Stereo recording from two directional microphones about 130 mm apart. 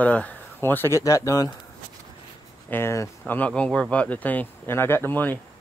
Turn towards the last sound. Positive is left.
turn(degrees=15)  # may be behind; listen again after turning